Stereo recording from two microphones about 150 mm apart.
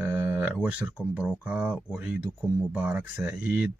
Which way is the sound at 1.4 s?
10° right (ahead or behind).